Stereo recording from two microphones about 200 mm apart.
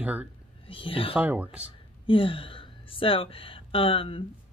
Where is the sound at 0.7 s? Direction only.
25° left (ahead or behind).